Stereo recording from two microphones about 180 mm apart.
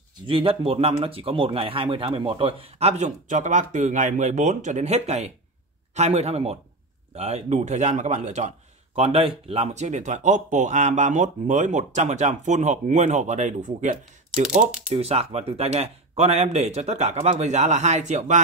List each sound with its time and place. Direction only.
0.3 s speech: 30° right (ahead or behind)